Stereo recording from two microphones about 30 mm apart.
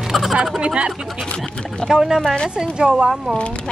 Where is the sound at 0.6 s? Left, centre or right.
Right.